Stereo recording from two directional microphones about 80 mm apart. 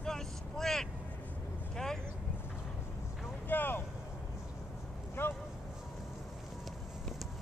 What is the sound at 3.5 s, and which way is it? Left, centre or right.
Vehicle, left.